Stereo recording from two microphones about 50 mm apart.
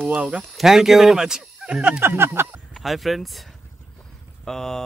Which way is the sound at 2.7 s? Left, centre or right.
Centre.